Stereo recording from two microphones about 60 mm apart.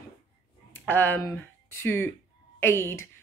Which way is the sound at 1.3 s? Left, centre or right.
Left.